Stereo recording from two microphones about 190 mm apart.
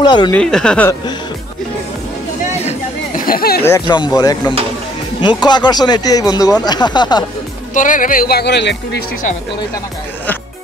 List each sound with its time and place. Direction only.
0.0 s speech: 25° left (ahead or behind)
0.3 s speech: 5° left (ahead or behind)
3.3 s a sound: 55° left (ahead or behind)
3.6 s speech: 20° left (ahead or behind)
7.7 s speech: 45° left (ahead or behind); by 9.0 s 65° left (ahead or behind)